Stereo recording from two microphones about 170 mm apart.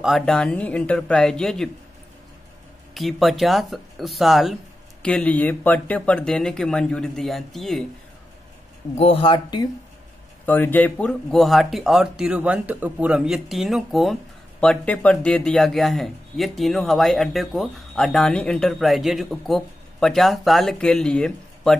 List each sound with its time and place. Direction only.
0.0 s a man's voice: centre (ahead or behind)
2.9 s a man's voice: centre (ahead or behind)
8.9 s speech: 30° left (ahead or behind)
10.4 s a man's voice: 10° left (ahead or behind)